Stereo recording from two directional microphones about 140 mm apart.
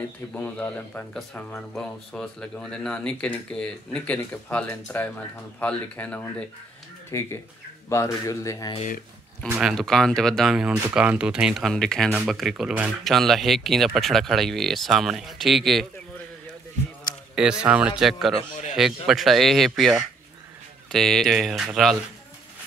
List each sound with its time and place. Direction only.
0.3 s speech: 10° left (ahead or behind)
9.6 s speech: centre (ahead or behind)
17.4 s speech: 5° right (ahead or behind)